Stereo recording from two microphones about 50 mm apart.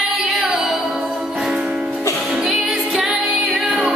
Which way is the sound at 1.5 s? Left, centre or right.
Centre.